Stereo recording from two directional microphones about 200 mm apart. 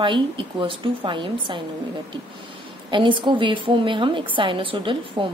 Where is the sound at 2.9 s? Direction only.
25° right (ahead or behind).